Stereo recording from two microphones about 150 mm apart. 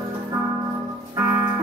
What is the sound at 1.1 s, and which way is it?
Music, 15° right (ahead or behind).